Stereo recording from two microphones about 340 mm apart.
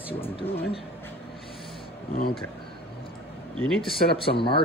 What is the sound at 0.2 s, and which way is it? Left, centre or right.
Speech, centre.